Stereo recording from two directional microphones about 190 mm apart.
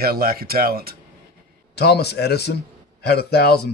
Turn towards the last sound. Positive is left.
turn(degrees=60)  # may be behind; listen again after turning